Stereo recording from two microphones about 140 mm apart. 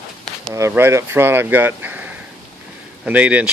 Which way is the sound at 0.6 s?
20° right (ahead or behind).